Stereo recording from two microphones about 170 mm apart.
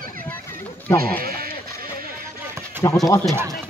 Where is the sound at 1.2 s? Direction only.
60° right (ahead or behind).